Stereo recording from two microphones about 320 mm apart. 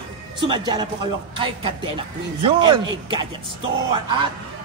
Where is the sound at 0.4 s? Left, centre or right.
Centre.